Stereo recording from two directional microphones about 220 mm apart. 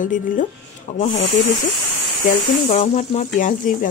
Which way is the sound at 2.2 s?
30° left (ahead or behind).